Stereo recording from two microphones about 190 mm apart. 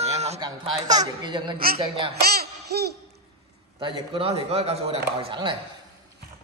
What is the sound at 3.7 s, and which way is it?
A man's voice, 25° right (ahead or behind).